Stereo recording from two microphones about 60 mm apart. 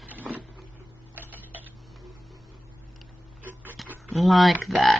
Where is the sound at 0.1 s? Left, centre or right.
Right.